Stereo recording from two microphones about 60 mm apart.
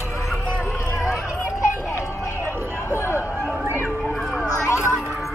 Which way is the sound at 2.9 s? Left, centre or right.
Left.